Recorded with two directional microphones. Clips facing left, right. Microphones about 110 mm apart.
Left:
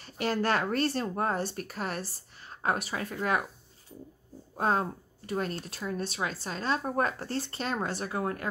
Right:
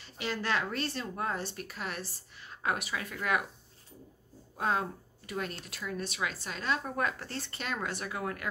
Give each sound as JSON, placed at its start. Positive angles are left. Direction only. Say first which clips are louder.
{"t": 0.0, "sound": "speech", "louder": "left 6 dB", "side_deg": 45}
{"t": 4.6, "sound": "speech", "louder": "left 3 dB", "side_deg": 40}